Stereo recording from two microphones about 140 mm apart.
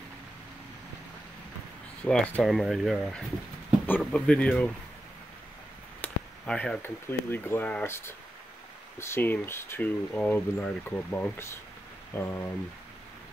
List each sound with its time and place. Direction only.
2.0 s speech: 5° left (ahead or behind)
5.9 s speech: 10° left (ahead or behind)